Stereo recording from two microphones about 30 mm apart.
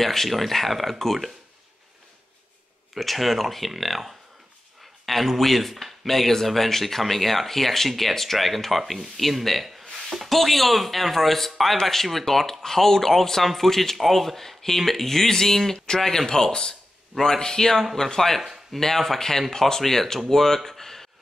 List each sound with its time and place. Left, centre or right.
0.0 s speech: centre
3.0 s speech: centre
20.2 s a sound: centre